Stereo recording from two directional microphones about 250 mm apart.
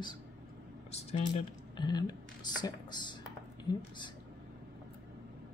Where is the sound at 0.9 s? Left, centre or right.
Left.